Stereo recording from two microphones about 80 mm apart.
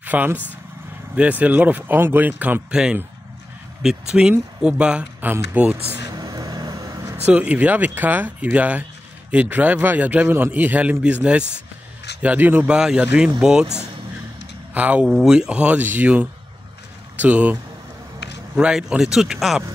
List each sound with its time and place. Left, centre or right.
0.0 s a man's voice: right
2.7 s speech: centre
4.1 s a man's voice: centre
6.0 s a sound: right
7.2 s a man's voice: centre
12.2 s a man's voice: right
14.7 s speech: centre
15.0 s speech: centre
18.6 s speech: centre